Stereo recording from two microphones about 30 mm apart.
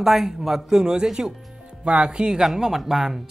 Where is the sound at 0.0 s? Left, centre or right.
Centre.